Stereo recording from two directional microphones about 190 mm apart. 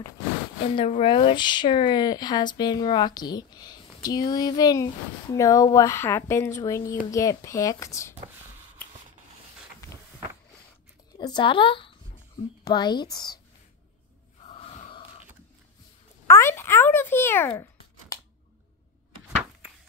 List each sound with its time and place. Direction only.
0.7 s speech: 30° left (ahead or behind)
11.1 s speech: 25° left (ahead or behind)
14.5 s gasp: 35° left (ahead or behind)
16.3 s speech: 15° left (ahead or behind)